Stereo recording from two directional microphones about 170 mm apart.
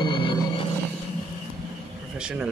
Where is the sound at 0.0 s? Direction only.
30° left (ahead or behind).